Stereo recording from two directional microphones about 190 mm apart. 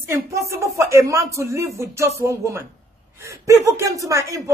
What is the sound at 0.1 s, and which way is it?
A man's voice, 15° right (ahead or behind).